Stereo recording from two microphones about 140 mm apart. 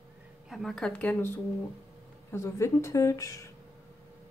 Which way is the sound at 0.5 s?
Centre (ahead or behind).